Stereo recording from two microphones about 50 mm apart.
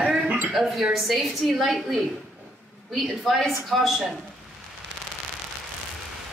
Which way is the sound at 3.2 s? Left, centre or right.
Centre.